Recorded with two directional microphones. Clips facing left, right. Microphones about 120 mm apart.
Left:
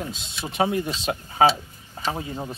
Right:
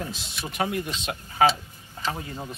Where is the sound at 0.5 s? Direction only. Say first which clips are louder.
Left 5 dB; 30° left (ahead or behind).